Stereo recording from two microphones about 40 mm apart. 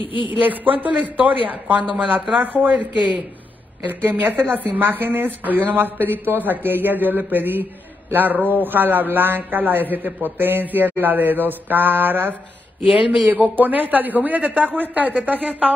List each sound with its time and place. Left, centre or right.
0.4 s a man's voice: right